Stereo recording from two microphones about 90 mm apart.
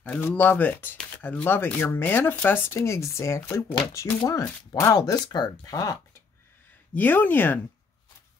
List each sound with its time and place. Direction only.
0.0 s speech: 15° left (ahead or behind)
4.2 s speech: 40° left (ahead or behind)
6.9 s speech: 20° left (ahead or behind)